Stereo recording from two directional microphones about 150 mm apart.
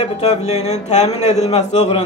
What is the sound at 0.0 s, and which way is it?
Speech, 50° left (ahead or behind).